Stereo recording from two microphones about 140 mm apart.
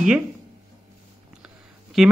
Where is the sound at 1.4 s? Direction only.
Centre (ahead or behind).